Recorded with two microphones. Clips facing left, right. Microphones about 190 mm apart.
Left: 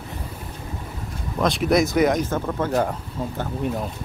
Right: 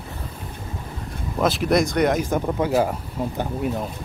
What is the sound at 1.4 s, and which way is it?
Speech, centre (ahead or behind).